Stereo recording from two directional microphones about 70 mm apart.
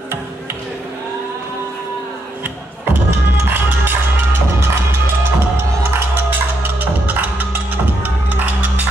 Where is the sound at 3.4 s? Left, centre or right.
Right.